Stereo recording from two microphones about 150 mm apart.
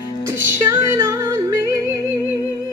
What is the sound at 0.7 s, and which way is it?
Music, 20° right (ahead or behind).